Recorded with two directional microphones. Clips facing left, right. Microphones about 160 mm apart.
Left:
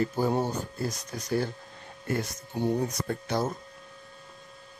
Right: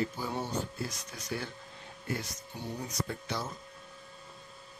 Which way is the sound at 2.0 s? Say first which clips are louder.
Left 6 dB; 50° left (ahead or behind).